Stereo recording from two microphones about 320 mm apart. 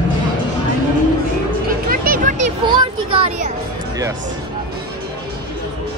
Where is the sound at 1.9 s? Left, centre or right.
Right.